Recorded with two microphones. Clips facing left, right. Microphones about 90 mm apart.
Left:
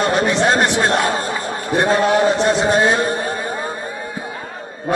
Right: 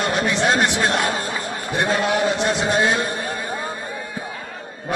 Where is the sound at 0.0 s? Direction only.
35° left (ahead or behind).